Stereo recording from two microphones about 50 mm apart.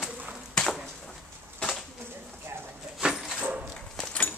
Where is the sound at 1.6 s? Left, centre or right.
Centre.